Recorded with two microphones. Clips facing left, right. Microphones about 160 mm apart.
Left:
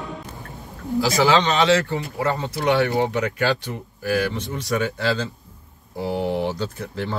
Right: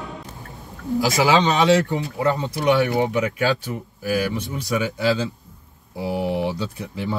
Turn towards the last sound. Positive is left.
turn(degrees=-10)  # may be behind; listen again after turning